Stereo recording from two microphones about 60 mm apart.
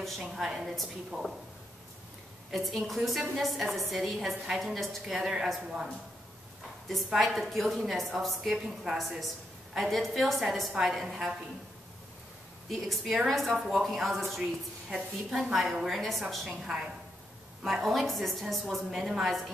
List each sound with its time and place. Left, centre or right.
0.4 s a woman's voice: centre
1.1 s speech: right
2.5 s a woman's voice: centre
7.2 s a woman's voice: centre
12.6 s a woman's voice: centre
14.4 s a woman's voice: centre
16.4 s a woman's voice: centre
17.8 s a woman's voice: centre